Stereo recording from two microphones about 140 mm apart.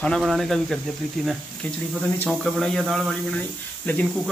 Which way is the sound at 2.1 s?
5° left (ahead or behind).